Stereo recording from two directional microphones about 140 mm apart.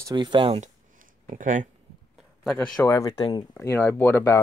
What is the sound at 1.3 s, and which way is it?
Speech, 65° right (ahead or behind).